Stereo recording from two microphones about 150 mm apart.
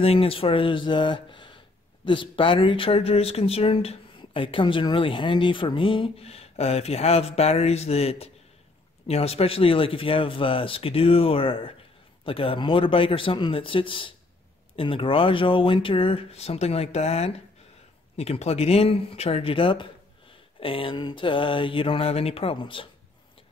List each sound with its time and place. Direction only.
0.0 s speech: 40° left (ahead or behind)